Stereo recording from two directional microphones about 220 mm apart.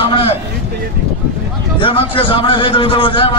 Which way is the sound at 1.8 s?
25° left (ahead or behind).